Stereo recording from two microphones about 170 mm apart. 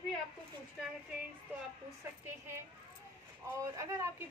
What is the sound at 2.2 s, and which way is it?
A woman's voice, 15° right (ahead or behind).